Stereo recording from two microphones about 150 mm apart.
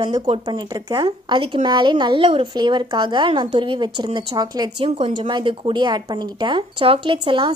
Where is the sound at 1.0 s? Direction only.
35° right (ahead or behind).